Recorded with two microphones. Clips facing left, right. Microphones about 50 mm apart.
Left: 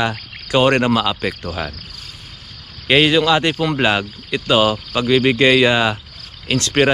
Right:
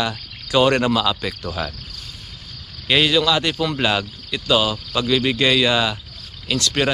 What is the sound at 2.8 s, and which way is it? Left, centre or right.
Speech, left.